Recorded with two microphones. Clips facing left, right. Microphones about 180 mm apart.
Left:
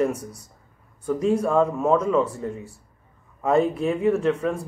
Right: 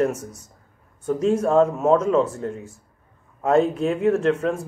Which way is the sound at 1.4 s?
25° right (ahead or behind).